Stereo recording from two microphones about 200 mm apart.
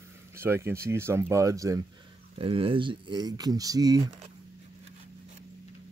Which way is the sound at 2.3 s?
25° right (ahead or behind).